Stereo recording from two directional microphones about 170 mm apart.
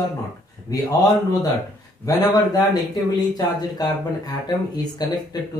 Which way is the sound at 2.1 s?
20° left (ahead or behind).